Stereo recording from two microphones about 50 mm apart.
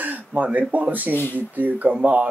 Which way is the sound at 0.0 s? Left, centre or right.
Right.